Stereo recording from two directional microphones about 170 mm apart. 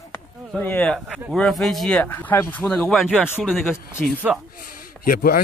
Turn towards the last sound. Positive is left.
turn(degrees=60)  # may be behind; listen again after turning